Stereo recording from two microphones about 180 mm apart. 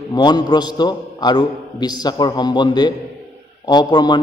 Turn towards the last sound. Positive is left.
turn(degrees=20)  # may be behind; listen again after turning